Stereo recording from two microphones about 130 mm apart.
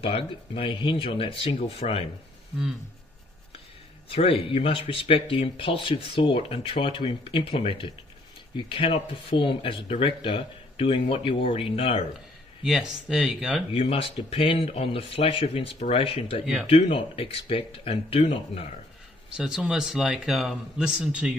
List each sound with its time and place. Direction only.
0.0 s speech: 45° left (ahead or behind)
4.1 s speech: 45° left (ahead or behind)
12.6 s speech: 5° right (ahead or behind)
13.7 s speech: 45° left (ahead or behind)
19.3 s speech: 5° right (ahead or behind)